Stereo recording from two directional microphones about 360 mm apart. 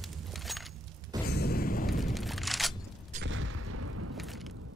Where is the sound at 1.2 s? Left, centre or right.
Left.